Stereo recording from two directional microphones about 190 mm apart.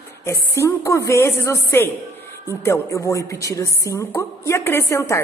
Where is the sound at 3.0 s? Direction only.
15° left (ahead or behind).